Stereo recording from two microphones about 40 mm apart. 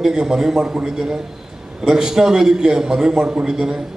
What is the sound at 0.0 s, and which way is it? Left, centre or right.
A man's voice, centre.